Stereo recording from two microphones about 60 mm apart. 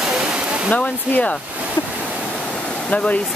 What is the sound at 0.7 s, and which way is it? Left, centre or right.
Speech, left.